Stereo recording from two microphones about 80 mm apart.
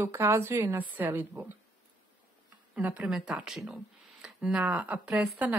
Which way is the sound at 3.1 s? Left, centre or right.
Centre.